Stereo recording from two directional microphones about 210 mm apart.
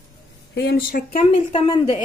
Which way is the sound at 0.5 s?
50° left (ahead or behind).